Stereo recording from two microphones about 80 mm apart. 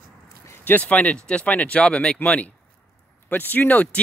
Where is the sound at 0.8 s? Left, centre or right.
Centre.